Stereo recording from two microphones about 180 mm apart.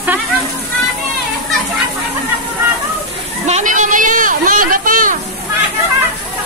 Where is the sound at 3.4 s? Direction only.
40° right (ahead or behind).